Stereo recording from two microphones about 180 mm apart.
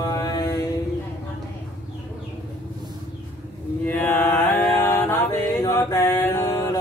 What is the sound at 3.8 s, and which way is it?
Mantra, 10° left (ahead or behind).